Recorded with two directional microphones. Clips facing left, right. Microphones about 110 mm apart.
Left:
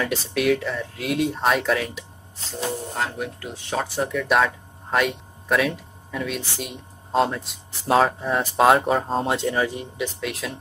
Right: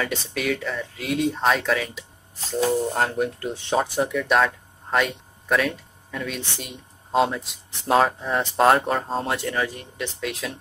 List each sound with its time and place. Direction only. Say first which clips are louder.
0.0 s speech: left 4 dB; 5° left (ahead or behind)
3.0 s speech: right 4 dB; 40° right (ahead or behind)
3.5 s speech: right 4 dB; 25° right (ahead or behind)
4.0 s speech: left 3 dB; centre (ahead or behind)
9.2 s speech: left 3 dB; 20° left (ahead or behind)
10.2 s speech: even; centre (ahead or behind)